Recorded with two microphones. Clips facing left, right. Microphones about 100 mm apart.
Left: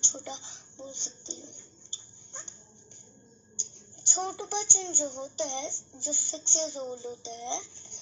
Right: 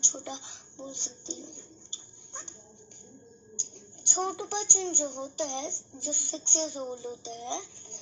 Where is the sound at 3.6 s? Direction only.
60° right (ahead or behind).